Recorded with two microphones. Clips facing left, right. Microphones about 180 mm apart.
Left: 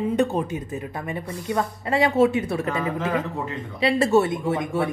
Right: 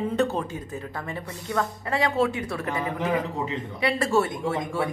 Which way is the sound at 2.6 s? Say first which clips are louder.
Left 2 dB; 20° right (ahead or behind).